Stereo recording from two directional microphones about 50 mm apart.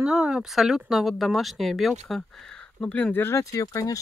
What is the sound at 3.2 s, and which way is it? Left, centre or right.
Speech, left.